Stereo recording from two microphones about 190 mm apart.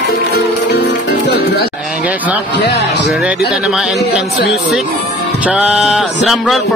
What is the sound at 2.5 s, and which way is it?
Speech, 60° left (ahead or behind).